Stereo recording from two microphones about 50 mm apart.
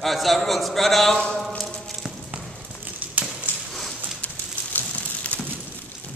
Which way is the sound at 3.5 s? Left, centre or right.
Left.